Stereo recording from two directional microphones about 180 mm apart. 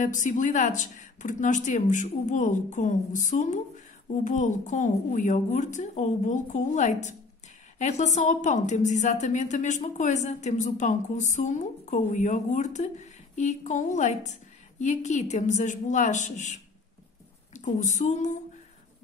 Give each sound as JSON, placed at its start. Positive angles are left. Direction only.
{"t": 0.0, "sound": "a woman's voice", "side_deg": 45}
{"t": 17.6, "sound": "a woman's voice", "side_deg": 40}